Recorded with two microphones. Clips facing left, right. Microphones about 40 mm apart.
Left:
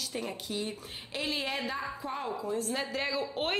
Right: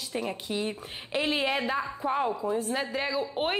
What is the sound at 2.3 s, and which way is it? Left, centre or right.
A woman's voice, centre.